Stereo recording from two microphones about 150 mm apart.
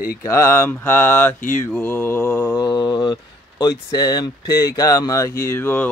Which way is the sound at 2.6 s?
25° left (ahead or behind).